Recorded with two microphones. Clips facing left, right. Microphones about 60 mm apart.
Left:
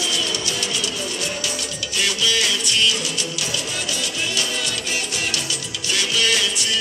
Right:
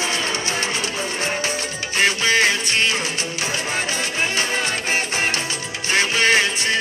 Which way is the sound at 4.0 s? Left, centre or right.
Right.